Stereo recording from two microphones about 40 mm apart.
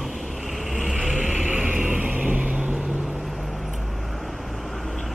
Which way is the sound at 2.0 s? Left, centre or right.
Right.